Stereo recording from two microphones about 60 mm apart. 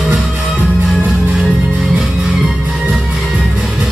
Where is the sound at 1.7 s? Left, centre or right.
Centre.